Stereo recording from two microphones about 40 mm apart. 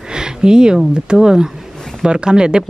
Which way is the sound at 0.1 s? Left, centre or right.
Centre.